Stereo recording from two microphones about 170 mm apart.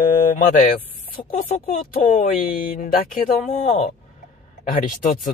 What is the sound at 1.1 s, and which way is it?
Speech, 55° left (ahead or behind).